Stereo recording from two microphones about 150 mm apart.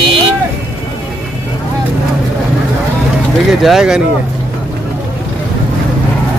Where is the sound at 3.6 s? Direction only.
5° right (ahead or behind).